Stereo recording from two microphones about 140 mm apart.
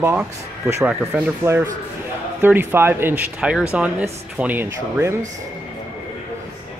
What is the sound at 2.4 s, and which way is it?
Speech, 15° right (ahead or behind).